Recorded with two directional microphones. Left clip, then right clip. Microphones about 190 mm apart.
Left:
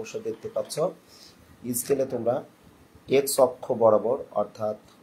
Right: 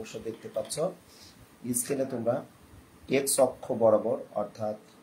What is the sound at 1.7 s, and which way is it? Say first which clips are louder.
Speech: left 5 dB; 20° left (ahead or behind).